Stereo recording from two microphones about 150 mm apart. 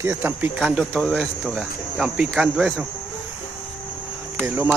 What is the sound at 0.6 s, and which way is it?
Speech, centre (ahead or behind).